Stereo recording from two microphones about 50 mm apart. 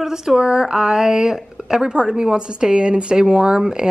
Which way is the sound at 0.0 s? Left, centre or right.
Centre.